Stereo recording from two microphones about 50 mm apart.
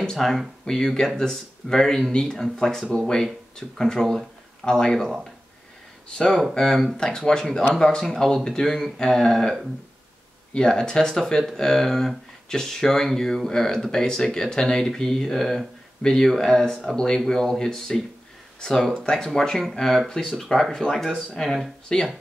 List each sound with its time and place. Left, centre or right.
0.0 s speech: centre
6.1 s speech: centre